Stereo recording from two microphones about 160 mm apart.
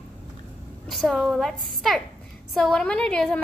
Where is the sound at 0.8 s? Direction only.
Centre (ahead or behind).